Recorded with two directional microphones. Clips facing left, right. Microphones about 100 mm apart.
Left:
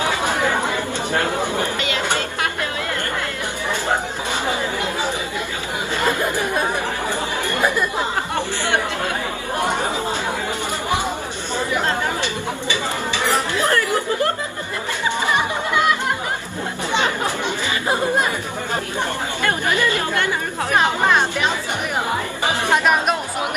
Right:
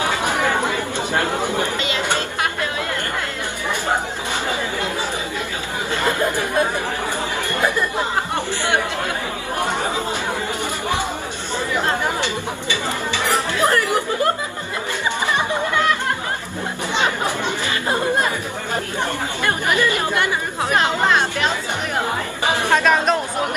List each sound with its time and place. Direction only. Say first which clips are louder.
17.0 s chatter: right 4 dB; 20° right (ahead or behind)
22.7 s speech: right 1 dB; 15° left (ahead or behind)